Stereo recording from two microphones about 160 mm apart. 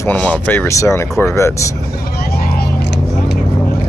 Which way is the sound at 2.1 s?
75° left (ahead or behind).